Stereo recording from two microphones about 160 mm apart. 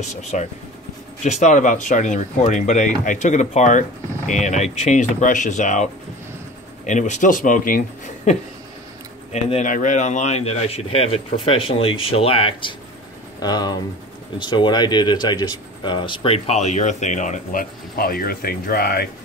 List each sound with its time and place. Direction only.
0.0 s speech: 45° left (ahead or behind)
6.9 s speech: 50° left (ahead or behind)
8.3 s speech: 45° left (ahead or behind)
13.4 s speech: 25° left (ahead or behind); by 19.0 s 75° left (ahead or behind)